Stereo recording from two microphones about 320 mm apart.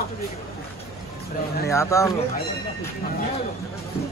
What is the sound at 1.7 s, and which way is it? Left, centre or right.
Speech, centre.